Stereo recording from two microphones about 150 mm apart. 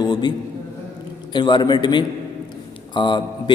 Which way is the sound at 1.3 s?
30° left (ahead or behind).